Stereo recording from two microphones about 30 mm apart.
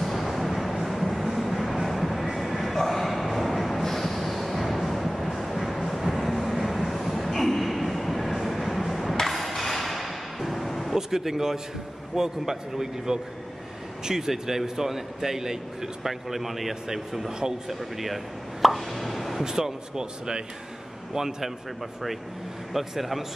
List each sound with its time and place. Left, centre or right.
0.0 s a sound: centre
1.4 s vehicle: centre
2.3 s bow-wow: centre
9.2 s a sound: centre
11.0 s a man's voice: centre
19.4 s a man's voice: centre
22.7 s a man's voice: centre